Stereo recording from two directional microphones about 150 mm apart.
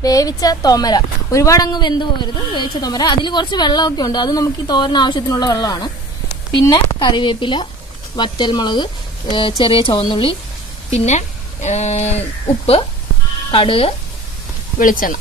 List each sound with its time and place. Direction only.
0.0 s speech: 25° left (ahead or behind)
10.9 s a woman's voice: 50° left (ahead or behind)
14.8 s speech: 65° left (ahead or behind)